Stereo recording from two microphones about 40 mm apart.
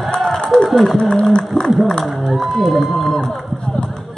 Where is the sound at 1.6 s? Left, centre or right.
Centre.